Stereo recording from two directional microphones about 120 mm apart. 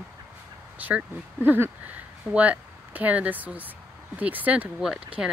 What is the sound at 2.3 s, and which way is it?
Speech, 10° right (ahead or behind).